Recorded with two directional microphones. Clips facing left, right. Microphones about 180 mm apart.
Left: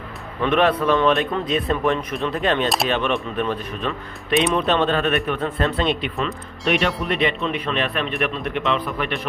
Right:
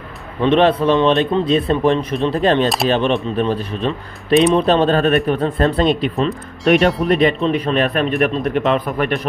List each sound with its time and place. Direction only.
0.4 s a man's voice: 30° right (ahead or behind)
6.8 s speech: centre (ahead or behind)
7.1 s speech: 40° right (ahead or behind)